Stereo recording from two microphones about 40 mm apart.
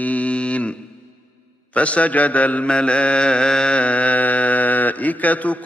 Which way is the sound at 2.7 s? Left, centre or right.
Left.